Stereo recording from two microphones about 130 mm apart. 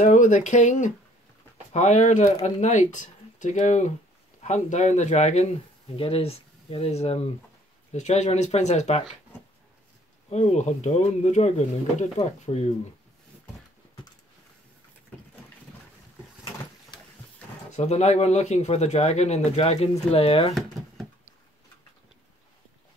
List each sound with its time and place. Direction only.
0.0 s speech: 70° left (ahead or behind)
5.9 s speech: 45° left (ahead or behind)
10.3 s speech: 60° left (ahead or behind)
17.6 s speech: 60° left (ahead or behind)